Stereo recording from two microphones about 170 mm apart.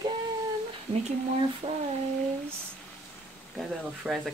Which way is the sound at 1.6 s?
30° right (ahead or behind).